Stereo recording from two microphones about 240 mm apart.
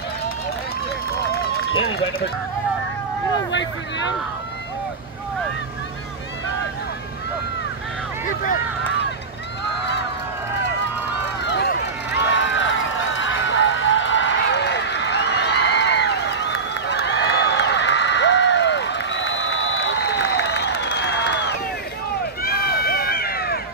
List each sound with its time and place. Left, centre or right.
1.3 s run: left
1.7 s speech: left
11.4 s run: left